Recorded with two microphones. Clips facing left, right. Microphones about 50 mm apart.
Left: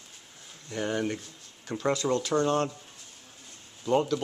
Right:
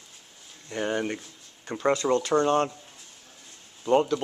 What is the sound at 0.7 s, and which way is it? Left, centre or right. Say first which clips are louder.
Speech: right 2 dB; centre.